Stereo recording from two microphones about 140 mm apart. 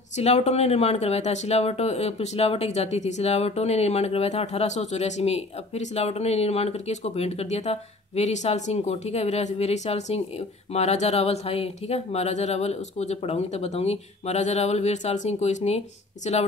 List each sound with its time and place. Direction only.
0.2 s speech: 50° left (ahead or behind)